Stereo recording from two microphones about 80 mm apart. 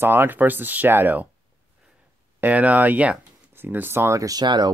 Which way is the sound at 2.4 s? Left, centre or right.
Centre.